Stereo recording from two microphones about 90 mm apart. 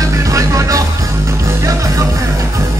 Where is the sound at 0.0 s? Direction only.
35° right (ahead or behind).